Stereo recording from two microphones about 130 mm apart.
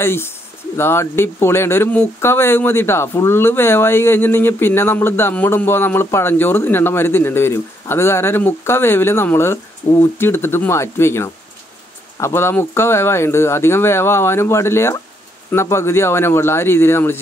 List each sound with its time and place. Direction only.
0.0 s speech: 20° left (ahead or behind)